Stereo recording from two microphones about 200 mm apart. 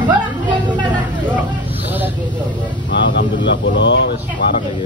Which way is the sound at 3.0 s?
65° left (ahead or behind).